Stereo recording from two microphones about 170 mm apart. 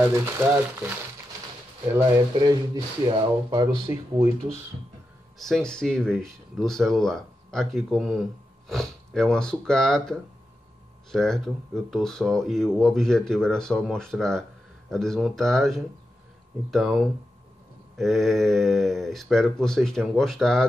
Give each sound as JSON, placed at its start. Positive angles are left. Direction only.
{"t": 0.0, "sound": "speech", "side_deg": -10}
{"t": 2.4, "sound": "speech", "side_deg": -25}
{"t": 5.4, "sound": "speech", "side_deg": 5}